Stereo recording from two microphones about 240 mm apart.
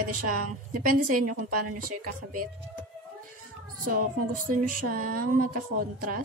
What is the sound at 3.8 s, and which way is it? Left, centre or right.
A woman's voice, right.